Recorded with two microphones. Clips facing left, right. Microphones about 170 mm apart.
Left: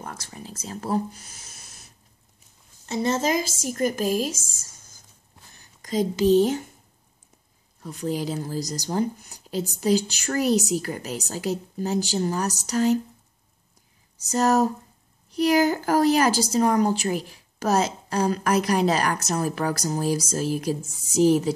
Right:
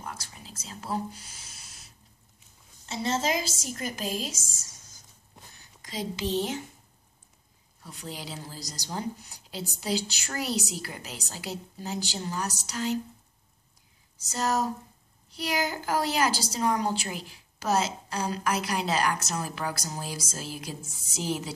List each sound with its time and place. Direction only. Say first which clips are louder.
0.0 s speech: left 4 dB; 45° left (ahead or behind)
2.9 s a woman's voice: left 5 dB; 50° left (ahead or behind)
5.8 s speech: left 10 dB; 45° left (ahead or behind)
7.8 s a woman's voice: left 12 dB; 45° left (ahead or behind)
14.3 s a woman's voice: left 8 dB; 45° left (ahead or behind)